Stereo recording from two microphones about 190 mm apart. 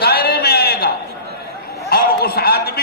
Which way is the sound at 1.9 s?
55° left (ahead or behind).